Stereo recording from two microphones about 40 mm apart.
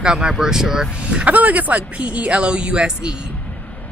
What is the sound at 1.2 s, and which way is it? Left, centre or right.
Speech, right.